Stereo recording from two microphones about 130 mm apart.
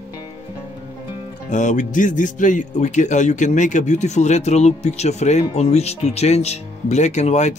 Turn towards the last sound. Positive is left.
turn(degrees=60)  # may be behind; listen again after turning